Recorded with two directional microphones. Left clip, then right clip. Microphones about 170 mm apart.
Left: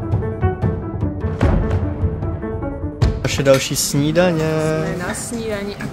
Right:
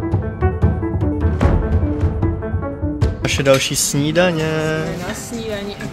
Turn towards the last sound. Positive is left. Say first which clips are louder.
# left 1 dB
turn(degrees=15)  # may be behind; listen again after turning